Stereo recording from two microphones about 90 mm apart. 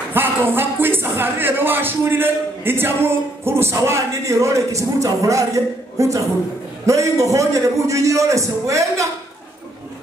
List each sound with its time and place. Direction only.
0.1 s a man's voice: 25° right (ahead or behind)